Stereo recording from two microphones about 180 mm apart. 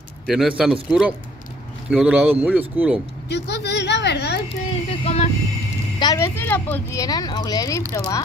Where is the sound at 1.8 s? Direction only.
5° right (ahead or behind).